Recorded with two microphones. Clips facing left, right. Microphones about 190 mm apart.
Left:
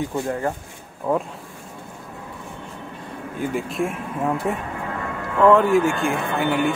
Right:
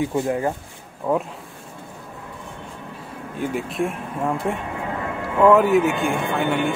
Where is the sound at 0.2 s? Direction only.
15° right (ahead or behind).